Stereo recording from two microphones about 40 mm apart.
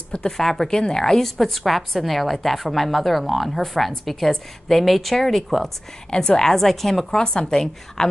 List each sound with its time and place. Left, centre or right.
0.4 s a woman's voice: centre
6.0 s a woman's voice: centre
7.1 s a woman's voice: centre